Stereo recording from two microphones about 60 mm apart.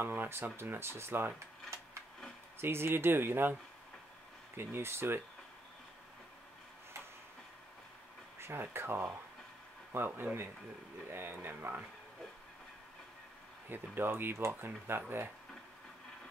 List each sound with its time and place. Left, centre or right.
0.0 s speech: right
2.6 s speech: right
4.6 s speech: right
8.4 s speech: right
13.7 s speech: right